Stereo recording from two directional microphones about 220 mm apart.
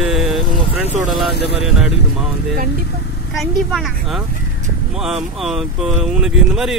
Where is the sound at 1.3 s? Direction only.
50° left (ahead or behind).